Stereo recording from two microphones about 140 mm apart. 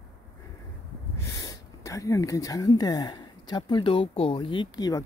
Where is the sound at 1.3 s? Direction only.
25° left (ahead or behind).